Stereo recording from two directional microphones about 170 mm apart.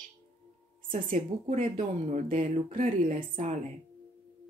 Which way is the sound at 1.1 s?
50° right (ahead or behind).